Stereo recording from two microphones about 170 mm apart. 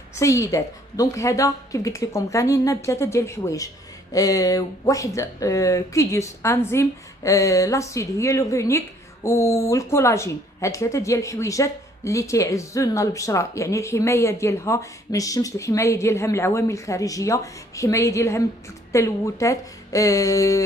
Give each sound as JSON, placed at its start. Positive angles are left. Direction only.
{"t": 0.2, "sound": "a woman's voice", "side_deg": 20}